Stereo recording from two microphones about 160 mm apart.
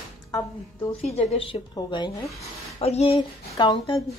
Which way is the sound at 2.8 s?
40° left (ahead or behind).